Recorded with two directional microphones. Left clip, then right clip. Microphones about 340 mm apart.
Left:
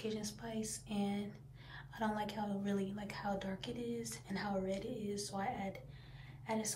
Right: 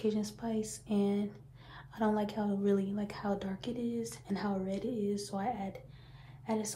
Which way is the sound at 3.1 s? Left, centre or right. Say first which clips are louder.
Right 4 dB; centre.